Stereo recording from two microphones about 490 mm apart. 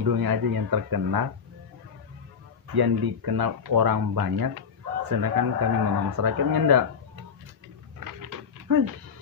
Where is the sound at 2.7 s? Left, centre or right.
Right.